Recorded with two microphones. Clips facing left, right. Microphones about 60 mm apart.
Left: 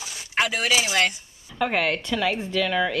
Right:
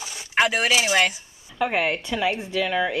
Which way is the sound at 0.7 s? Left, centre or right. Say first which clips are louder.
Right 2 dB; right.